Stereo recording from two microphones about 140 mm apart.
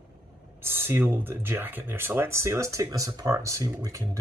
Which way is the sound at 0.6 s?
15° right (ahead or behind).